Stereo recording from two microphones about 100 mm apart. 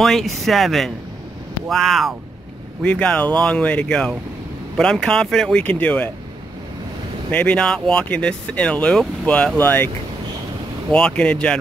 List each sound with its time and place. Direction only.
0.0 s speech: centre (ahead or behind)
2.8 s speech: 10° left (ahead or behind)
7.2 s speech: 15° left (ahead or behind)
10.9 s speech: 10° left (ahead or behind)